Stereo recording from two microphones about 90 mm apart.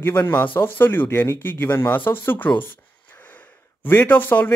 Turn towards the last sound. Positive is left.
turn(degrees=20)  # may be behind; listen again after turning